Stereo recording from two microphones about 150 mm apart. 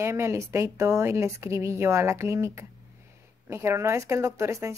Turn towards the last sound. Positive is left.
turn(degrees=-20)  # may be behind; listen again after turning